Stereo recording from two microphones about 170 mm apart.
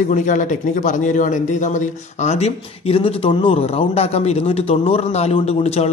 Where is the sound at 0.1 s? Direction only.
50° left (ahead or behind).